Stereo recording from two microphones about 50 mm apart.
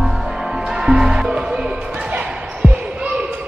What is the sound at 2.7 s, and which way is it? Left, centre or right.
Basketball bounce, right.